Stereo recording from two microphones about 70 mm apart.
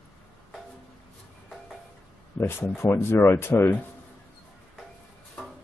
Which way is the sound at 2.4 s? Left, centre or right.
Left.